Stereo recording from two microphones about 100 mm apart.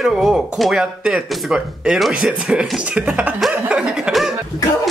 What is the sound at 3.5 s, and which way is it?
Chuckle, 10° right (ahead or behind).